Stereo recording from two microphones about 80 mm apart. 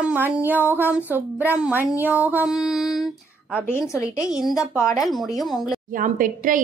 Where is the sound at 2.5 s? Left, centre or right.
Centre.